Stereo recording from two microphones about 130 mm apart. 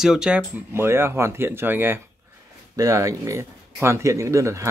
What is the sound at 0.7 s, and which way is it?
Speech, 20° right (ahead or behind).